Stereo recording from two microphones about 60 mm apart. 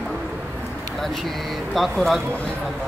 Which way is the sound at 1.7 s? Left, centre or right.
Centre.